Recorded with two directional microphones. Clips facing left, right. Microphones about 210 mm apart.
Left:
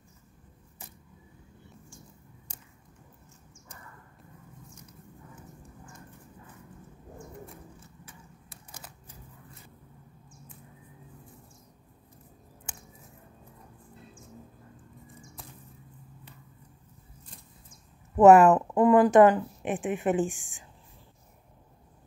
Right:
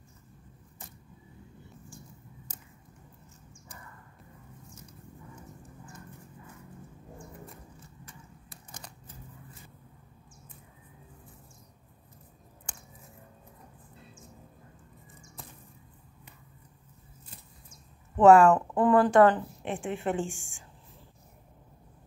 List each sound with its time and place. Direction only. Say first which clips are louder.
8.7 s typewriter: right 1 dB; 10° left (ahead or behind)
12.7 s a sound: even; 5° left (ahead or behind)
18.1 s a woman's voice: left 2 dB; 20° left (ahead or behind)